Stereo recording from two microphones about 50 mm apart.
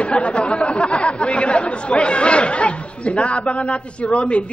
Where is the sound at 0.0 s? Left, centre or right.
Left.